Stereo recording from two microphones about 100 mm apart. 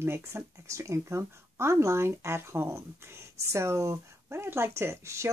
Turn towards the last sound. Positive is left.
turn(degrees=-30)  # may be behind; listen again after turning